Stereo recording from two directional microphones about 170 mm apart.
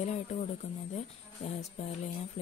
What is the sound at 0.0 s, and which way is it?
Speech, 40° left (ahead or behind).